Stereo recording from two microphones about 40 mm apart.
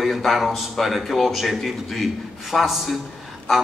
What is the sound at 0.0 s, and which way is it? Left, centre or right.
A man's voice, centre.